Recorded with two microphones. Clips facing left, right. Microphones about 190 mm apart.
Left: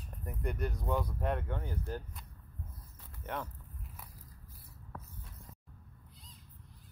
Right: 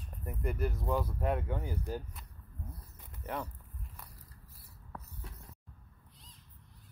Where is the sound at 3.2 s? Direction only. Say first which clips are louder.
Right 1 dB; centre (ahead or behind).